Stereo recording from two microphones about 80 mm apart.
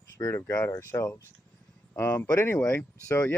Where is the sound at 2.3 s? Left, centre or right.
Left.